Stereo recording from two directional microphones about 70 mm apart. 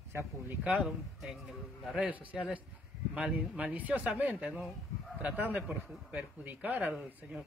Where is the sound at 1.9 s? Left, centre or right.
Centre.